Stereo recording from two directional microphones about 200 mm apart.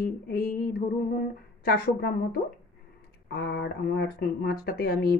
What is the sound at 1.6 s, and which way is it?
Speech, 50° left (ahead or behind).